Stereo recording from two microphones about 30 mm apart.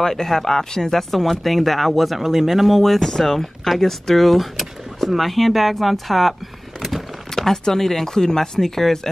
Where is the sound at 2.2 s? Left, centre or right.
Centre.